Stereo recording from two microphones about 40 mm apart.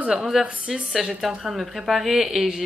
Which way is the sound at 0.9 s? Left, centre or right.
Centre.